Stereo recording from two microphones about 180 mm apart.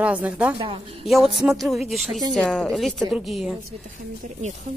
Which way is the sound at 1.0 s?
Centre (ahead or behind).